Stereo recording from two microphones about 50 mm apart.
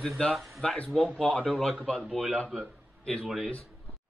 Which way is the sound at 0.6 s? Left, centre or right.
Centre.